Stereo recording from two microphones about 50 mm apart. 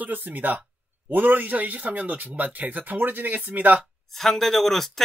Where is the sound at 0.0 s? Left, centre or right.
Right.